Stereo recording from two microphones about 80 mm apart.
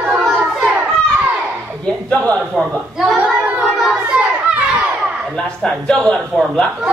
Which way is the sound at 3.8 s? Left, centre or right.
Centre.